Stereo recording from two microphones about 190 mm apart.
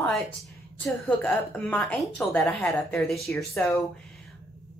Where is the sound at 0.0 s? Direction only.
Centre (ahead or behind).